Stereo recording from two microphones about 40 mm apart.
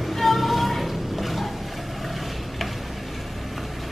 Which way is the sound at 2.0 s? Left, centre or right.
Centre.